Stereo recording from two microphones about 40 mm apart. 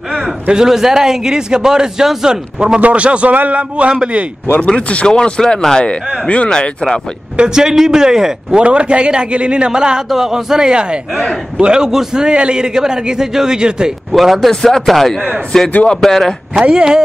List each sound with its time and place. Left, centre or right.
0.7 s speech: centre
2.8 s a man's voice: right
3.3 s a man's voice: right
4.6 s speech: left
5.0 s speech: centre
6.2 s speech: left
6.5 s speech: centre
7.4 s speech: centre
8.5 s a man's voice: right
14.1 s speech: centre
16.5 s a man's voice: centre